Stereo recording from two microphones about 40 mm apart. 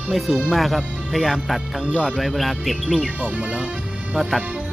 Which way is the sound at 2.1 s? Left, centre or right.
Centre.